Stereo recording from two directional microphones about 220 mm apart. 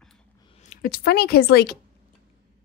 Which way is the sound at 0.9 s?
45° left (ahead or behind).